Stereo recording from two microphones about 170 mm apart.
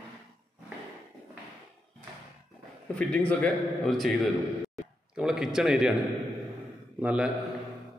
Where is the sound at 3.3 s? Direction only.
5° left (ahead or behind).